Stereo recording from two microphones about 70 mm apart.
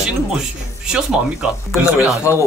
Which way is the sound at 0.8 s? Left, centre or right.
Centre.